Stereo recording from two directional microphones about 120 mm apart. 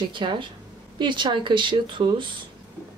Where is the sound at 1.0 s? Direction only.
40° right (ahead or behind).